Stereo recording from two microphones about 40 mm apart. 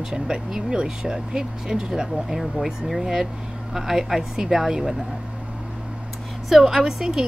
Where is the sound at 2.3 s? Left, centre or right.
Centre.